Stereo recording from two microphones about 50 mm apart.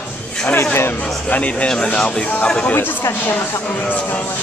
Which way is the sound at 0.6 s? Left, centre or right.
Left.